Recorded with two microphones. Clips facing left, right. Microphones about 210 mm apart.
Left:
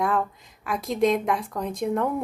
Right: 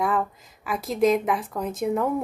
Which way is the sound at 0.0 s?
Centre (ahead or behind).